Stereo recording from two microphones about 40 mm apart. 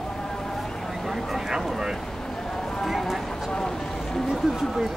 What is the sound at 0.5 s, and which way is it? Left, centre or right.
Vehicle, centre.